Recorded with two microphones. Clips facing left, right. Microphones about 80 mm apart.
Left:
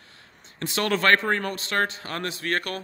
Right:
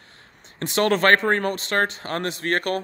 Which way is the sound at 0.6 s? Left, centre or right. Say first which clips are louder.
Right 4 dB; right.